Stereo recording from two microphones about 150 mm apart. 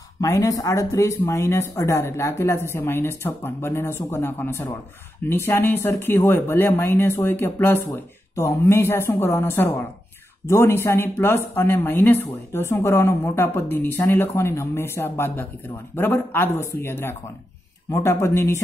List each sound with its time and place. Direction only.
0.2 s a woman's voice: 20° left (ahead or behind)